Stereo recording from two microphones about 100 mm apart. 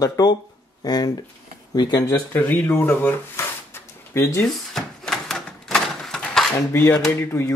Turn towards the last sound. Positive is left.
turn(degrees=25)  # may be behind; listen again after turning